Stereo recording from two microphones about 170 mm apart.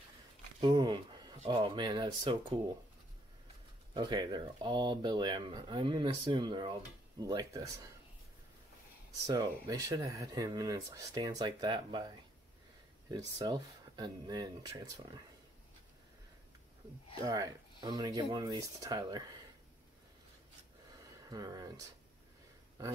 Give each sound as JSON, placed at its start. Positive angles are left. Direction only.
{"t": 0.6, "sound": "a sound", "side_deg": -25}
{"t": 1.5, "sound": "speech", "side_deg": -25}
{"t": 3.9, "sound": "speech", "side_deg": -25}
{"t": 9.2, "sound": "speech", "side_deg": -20}
{"t": 13.4, "sound": "speech", "side_deg": -25}
{"t": 17.2, "sound": "speech", "side_deg": -20}
{"t": 21.3, "sound": "speech", "side_deg": -20}